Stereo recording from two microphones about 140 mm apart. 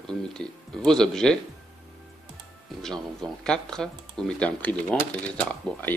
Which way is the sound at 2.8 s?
5° left (ahead or behind).